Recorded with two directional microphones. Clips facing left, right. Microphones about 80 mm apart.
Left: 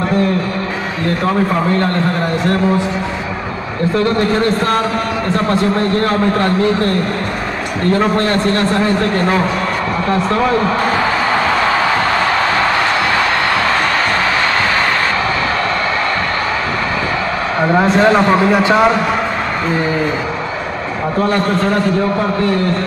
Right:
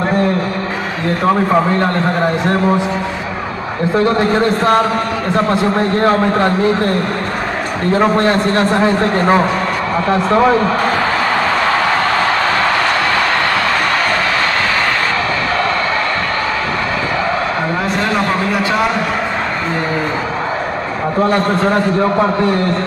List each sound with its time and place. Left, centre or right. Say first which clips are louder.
1.2 s a man's voice: right 4 dB; right
3.9 s a man's voice: right 2 dB; right
8.0 s a man's voice: right 2 dB; right
17.7 s a sound: left 9 dB; left